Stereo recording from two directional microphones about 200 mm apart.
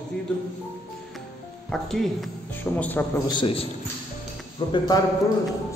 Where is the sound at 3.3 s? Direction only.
25° left (ahead or behind).